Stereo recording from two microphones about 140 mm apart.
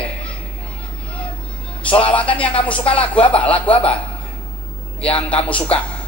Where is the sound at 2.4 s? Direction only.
10° left (ahead or behind).